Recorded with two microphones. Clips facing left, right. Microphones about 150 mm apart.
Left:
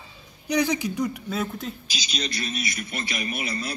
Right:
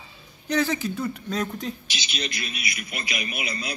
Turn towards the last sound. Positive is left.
turn(degrees=30)  # may be behind; listen again after turning